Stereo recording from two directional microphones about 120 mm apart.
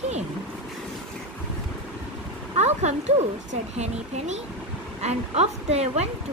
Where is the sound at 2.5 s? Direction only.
70° right (ahead or behind).